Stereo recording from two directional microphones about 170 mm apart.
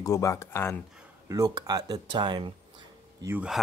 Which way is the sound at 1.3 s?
20° right (ahead or behind).